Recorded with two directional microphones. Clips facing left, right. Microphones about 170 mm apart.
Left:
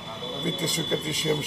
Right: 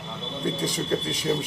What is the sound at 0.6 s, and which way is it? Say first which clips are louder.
Speech: right 1 dB; centre (ahead or behind).